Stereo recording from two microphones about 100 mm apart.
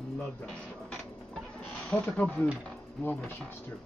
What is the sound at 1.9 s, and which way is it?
Speech, 15° left (ahead or behind).